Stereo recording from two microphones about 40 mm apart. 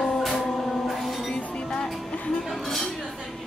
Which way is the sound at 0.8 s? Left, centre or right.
Centre.